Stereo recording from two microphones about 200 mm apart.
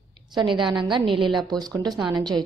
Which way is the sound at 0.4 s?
25° right (ahead or behind).